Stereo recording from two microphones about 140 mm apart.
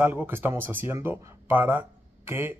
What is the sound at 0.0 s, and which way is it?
Speech, 10° right (ahead or behind).